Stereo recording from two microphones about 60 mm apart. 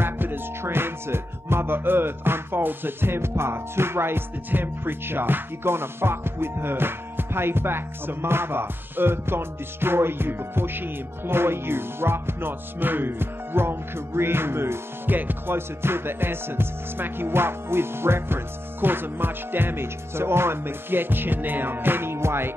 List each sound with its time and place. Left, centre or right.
0.0 s music: right